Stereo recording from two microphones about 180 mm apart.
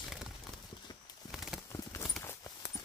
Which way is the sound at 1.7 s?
15° left (ahead or behind).